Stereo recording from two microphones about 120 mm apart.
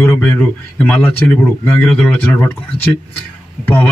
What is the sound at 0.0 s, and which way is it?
A man's voice, 20° left (ahead or behind).